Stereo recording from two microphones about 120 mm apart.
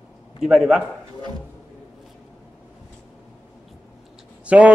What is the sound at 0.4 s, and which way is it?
Speech, 5° right (ahead or behind).